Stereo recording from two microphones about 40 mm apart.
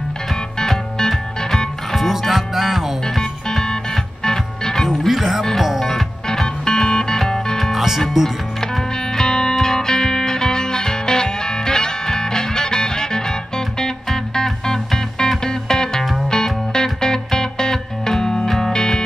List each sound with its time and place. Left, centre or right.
0.6 s music: centre
1.9 s music: centre
3.2 s music: centre
4.8 s music: centre
5.8 s music: centre
6.2 s music: centre
7.7 s music: centre
8.9 s music: centre